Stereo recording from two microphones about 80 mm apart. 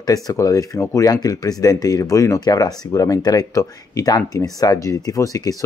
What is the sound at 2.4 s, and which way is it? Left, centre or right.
Speech, left.